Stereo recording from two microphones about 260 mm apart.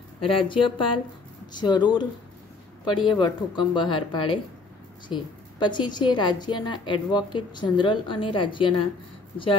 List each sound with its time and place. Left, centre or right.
0.2 s a woman's voice: centre
3.1 s a woman's voice: centre